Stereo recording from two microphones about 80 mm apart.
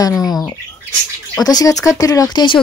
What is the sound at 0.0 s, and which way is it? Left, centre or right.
Speech, left.